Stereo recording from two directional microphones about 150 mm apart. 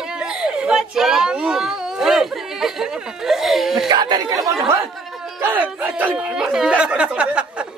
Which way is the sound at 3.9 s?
25° right (ahead or behind).